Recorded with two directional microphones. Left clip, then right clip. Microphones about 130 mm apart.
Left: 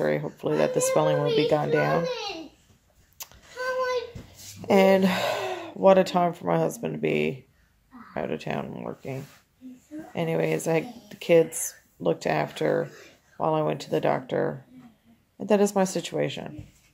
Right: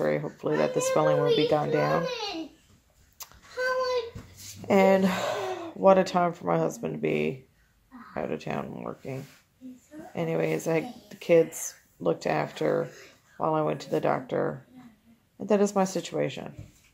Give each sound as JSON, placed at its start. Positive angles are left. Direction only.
{"t": 0.0, "sound": "speech", "side_deg": 20}
{"t": 3.2, "sound": "a sound", "side_deg": 25}
{"t": 4.6, "sound": "speech", "side_deg": 20}